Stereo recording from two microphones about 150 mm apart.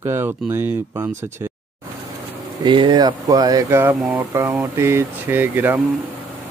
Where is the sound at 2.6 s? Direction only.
35° right (ahead or behind).